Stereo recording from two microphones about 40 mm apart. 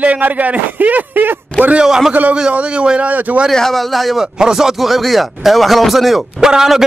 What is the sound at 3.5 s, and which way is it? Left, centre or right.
Speech, centre.